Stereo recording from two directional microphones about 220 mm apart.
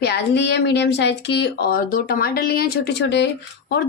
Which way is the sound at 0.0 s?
50° left (ahead or behind).